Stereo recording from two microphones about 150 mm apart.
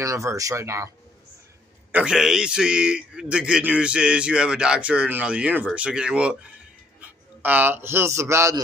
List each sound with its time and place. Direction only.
0.0 s speech: 20° right (ahead or behind)
1.9 s a man's voice: 10° right (ahead or behind)